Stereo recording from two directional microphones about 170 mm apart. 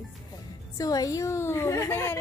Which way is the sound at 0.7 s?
20° left (ahead or behind).